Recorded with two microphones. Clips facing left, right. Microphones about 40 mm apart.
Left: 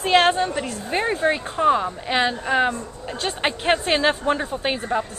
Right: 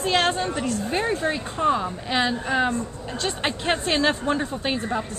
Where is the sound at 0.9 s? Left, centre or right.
Centre.